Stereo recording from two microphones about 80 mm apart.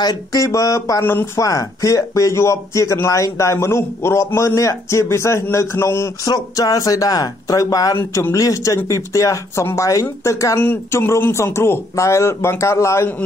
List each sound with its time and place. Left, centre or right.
0.0 s speech: left
1.0 s speech: left
1.4 s speech: left
6.2 s speech: left
8.1 s speech: left
10.6 s speech: left